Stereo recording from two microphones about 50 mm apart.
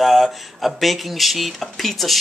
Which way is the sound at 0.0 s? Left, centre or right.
Centre.